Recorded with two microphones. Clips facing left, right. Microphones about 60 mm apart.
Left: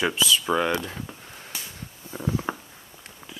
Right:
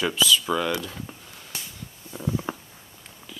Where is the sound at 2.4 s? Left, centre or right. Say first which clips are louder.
Left 2 dB; left.